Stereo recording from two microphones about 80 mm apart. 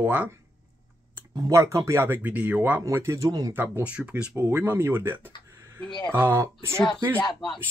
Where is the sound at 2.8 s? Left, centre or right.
Right.